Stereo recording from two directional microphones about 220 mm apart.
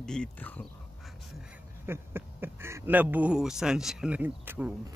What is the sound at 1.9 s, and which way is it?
Speech, 10° right (ahead or behind).